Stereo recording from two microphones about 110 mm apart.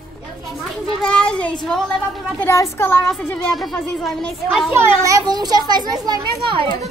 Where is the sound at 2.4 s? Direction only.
25° left (ahead or behind); by 4.7 s centre (ahead or behind).